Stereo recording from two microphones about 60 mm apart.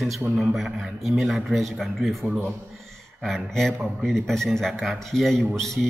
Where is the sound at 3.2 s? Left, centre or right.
Centre.